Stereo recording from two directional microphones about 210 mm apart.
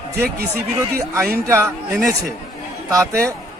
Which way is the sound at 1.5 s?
10° right (ahead or behind).